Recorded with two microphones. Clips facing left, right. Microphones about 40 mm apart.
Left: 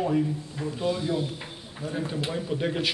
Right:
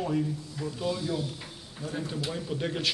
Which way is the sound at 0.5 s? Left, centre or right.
Left.